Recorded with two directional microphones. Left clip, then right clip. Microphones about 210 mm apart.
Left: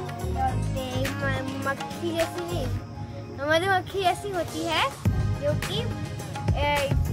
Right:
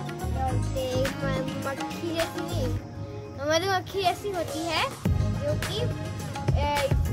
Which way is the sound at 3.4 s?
15° right (ahead or behind).